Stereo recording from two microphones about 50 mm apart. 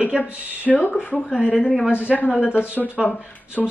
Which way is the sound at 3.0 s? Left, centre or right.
Left.